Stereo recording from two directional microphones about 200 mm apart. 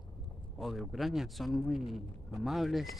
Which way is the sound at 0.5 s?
Centre (ahead or behind).